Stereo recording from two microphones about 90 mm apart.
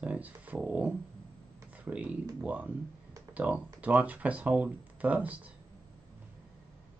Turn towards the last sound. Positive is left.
turn(degrees=-20)  # may be behind; listen again after turning